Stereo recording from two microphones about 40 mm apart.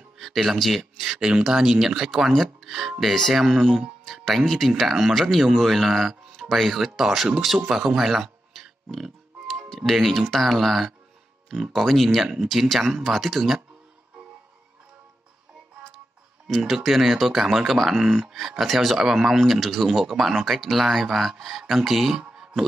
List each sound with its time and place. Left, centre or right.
0.2 s speech: centre
1.0 s speech: centre
2.3 s speech: centre
3.5 s speech: centre
4.0 s speech: centre
7.7 s music: centre
9.8 s speech: centre
16.4 s speech: centre